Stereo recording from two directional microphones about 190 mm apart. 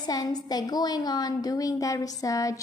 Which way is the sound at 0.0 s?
20° left (ahead or behind).